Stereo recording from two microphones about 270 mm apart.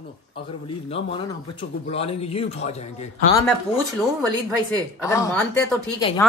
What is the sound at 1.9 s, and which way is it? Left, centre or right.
Speech, left.